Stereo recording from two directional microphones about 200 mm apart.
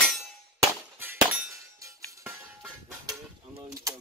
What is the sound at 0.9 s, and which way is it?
Music, 10° right (ahead or behind).